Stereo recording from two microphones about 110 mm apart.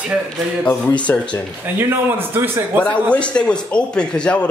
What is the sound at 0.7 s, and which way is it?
Speech, 10° left (ahead or behind).